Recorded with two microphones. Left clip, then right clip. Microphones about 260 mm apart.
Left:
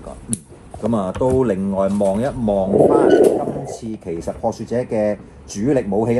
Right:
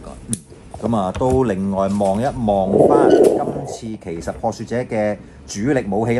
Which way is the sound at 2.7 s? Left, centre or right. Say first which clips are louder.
Even; centre.